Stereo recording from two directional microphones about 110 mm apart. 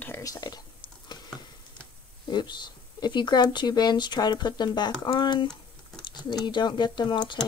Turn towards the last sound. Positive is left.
turn(degrees=45)  # may be behind; listen again after turning